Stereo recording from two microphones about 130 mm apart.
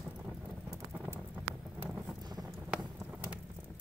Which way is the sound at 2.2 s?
30° right (ahead or behind).